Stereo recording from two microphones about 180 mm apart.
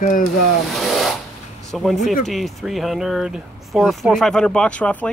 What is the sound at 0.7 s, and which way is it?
Rub, centre (ahead or behind).